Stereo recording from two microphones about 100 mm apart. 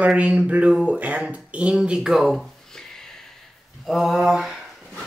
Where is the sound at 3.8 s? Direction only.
Centre (ahead or behind).